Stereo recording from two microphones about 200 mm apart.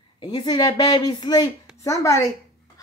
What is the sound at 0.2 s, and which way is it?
Speech, 20° left (ahead or behind).